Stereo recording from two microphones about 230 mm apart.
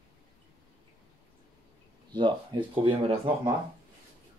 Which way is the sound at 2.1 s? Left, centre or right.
Centre.